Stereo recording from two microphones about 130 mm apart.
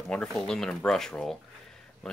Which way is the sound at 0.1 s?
5° left (ahead or behind).